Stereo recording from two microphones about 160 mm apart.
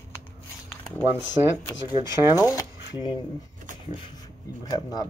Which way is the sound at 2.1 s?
15° right (ahead or behind).